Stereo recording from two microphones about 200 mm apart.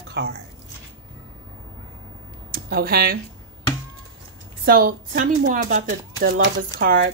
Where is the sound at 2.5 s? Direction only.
50° right (ahead or behind).